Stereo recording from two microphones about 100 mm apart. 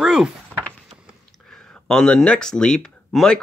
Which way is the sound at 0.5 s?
15° left (ahead or behind).